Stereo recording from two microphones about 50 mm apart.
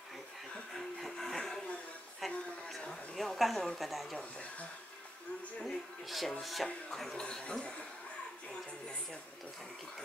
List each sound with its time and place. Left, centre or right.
0.7 s a sound: centre
2.1 s music: centre
3.2 s a sound: centre
3.6 s speech: centre
4.2 s speech: left
6.0 s speech: centre